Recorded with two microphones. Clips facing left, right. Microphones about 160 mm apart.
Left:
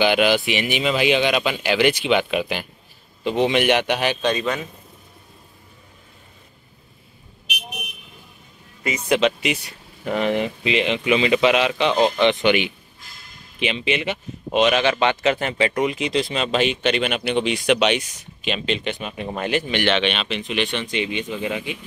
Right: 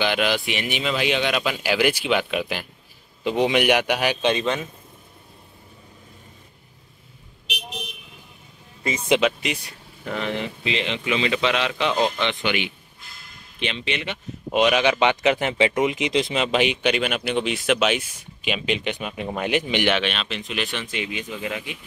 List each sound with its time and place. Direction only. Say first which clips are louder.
0.0 s speech: left 5 dB; 5° left (ahead or behind)
3.3 s speech: left 1 dB; 10° right (ahead or behind)
4.3 s speech: even; 25° right (ahead or behind)
8.8 s speech: even; 30° right (ahead or behind)
10.0 s speech: left 6 dB; 15° left (ahead or behind)
13.6 s speech: left 5 dB; 5° left (ahead or behind)
14.5 s speech: left 1 dB; 10° right (ahead or behind)
20.0 s speech: left 4 dB; centre (ahead or behind)